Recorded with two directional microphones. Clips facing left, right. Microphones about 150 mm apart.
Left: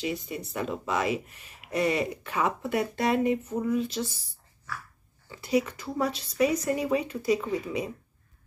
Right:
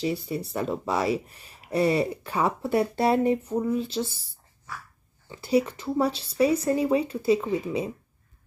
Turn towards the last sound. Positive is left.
turn(degrees=-30)  # may be behind; listen again after turning